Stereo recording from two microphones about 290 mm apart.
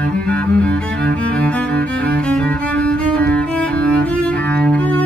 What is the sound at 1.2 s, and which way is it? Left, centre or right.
Music, centre.